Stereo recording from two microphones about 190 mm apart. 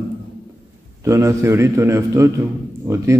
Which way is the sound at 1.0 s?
15° right (ahead or behind).